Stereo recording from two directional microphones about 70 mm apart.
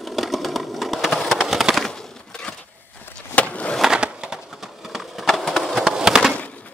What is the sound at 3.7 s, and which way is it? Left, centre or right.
Skateboard, centre.